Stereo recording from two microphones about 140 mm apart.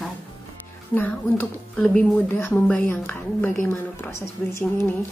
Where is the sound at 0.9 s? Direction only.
15° left (ahead or behind).